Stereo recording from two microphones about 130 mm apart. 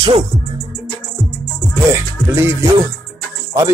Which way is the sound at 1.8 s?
20° right (ahead or behind).